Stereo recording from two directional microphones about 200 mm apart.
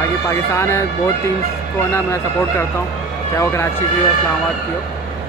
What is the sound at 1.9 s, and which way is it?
Speech, 15° left (ahead or behind).